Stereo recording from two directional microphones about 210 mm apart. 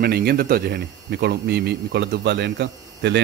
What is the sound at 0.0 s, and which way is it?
A man's voice, 50° right (ahead or behind).